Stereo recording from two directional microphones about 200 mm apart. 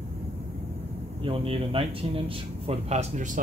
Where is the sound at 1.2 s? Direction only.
25° right (ahead or behind).